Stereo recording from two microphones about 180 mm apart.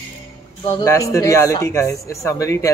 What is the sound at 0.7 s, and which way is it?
Speech, 15° left (ahead or behind).